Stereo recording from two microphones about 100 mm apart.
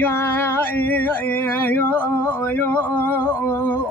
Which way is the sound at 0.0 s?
20° left (ahead or behind).